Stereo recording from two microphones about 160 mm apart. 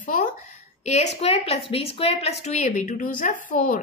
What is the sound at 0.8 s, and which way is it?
A woman's voice, 45° left (ahead or behind).